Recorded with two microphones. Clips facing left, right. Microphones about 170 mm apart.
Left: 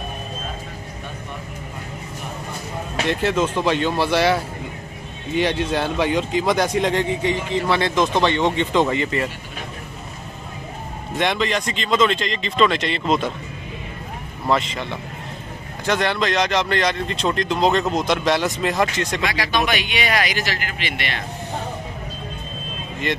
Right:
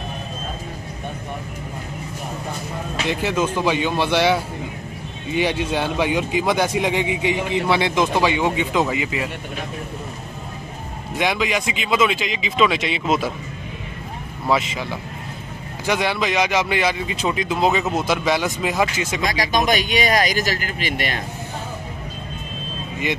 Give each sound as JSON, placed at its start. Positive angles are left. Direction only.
{"t": 3.1, "sound": "speech", "side_deg": 0}
{"t": 11.1, "sound": "speech", "side_deg": -5}
{"t": 14.5, "sound": "speech", "side_deg": 0}
{"t": 19.2, "sound": "speech", "side_deg": -40}